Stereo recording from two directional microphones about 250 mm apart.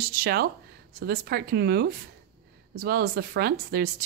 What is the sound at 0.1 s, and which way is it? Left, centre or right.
Speech, right.